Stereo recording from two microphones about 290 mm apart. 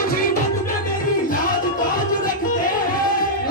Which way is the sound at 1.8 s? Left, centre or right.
Left.